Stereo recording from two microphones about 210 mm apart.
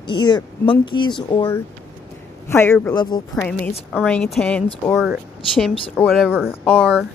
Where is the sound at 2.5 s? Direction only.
10° left (ahead or behind).